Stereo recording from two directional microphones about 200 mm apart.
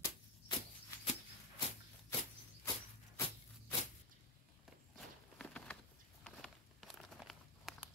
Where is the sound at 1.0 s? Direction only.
30° left (ahead or behind).